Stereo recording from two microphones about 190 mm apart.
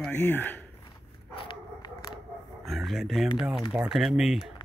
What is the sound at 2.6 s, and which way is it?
Speech, centre (ahead or behind).